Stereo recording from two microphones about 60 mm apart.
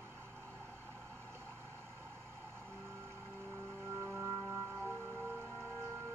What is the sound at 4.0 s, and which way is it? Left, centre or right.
Music, right.